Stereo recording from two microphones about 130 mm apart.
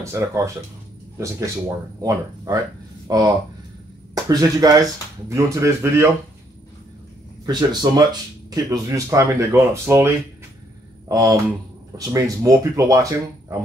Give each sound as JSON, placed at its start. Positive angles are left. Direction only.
{"t": 0.0, "sound": "speech", "side_deg": -20}
{"t": 7.4, "sound": "speech", "side_deg": -30}